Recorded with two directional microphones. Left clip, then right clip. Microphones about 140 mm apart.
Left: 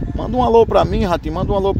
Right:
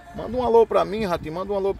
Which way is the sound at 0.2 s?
20° left (ahead or behind).